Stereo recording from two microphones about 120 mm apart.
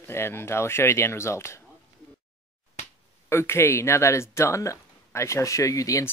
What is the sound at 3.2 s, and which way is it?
Speech, 20° left (ahead or behind).